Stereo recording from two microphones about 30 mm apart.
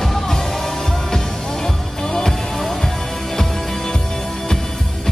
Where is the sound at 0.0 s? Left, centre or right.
Centre.